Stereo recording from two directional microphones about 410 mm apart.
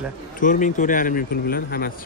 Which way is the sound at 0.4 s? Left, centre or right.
Centre.